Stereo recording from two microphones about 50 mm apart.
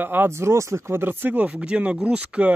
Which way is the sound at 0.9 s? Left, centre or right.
Right.